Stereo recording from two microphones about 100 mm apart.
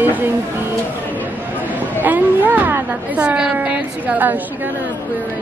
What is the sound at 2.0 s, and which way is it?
A woman's voice, 15° right (ahead or behind).